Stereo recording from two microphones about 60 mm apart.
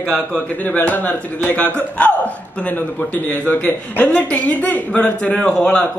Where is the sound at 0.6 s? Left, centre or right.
Left.